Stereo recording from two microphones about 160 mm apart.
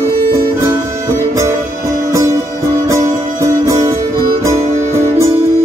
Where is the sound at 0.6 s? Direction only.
15° right (ahead or behind).